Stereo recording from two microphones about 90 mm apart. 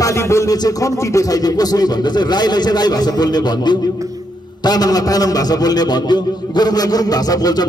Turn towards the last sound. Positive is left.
turn(degrees=45)  # may be behind; listen again after turning